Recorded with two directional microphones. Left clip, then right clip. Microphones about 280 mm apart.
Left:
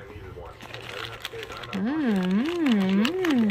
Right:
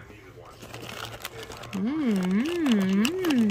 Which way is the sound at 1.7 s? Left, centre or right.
Centre.